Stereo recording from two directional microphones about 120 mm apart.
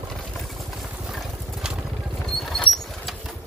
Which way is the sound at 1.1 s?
Centre (ahead or behind).